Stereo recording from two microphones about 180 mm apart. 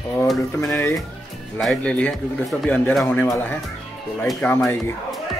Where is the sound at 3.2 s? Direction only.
15° left (ahead or behind).